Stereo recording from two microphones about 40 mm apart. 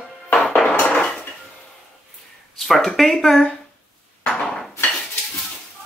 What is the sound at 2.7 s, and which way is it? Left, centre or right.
Speech, centre.